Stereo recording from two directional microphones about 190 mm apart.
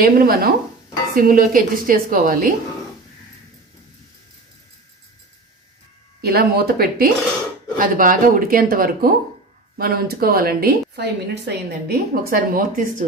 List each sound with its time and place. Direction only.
0.0 s a woman's voice: 50° right (ahead or behind)
6.2 s a woman's voice: 55° right (ahead or behind)